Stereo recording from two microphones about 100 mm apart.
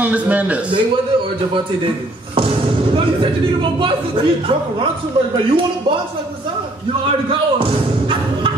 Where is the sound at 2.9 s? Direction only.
60° right (ahead or behind).